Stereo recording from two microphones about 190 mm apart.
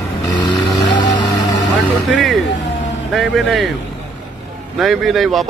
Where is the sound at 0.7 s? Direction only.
20° left (ahead or behind).